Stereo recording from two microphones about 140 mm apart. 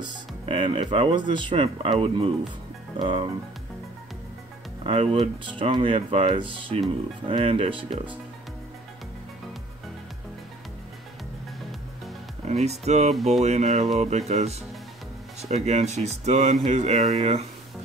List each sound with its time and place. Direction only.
0.0 s speech: 35° right (ahead or behind)
4.8 s speech: 45° right (ahead or behind)
12.4 s speech: 50° right (ahead or behind)
13.1 s speech: centre (ahead or behind)
13.4 s speech: 55° right (ahead or behind)